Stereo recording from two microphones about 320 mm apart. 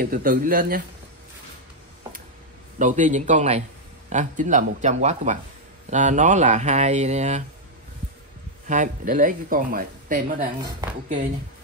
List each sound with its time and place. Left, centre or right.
0.0 s speech: right
2.8 s speech: right
8.6 s speech: right